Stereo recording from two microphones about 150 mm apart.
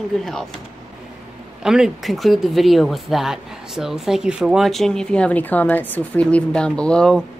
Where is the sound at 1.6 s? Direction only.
5° right (ahead or behind).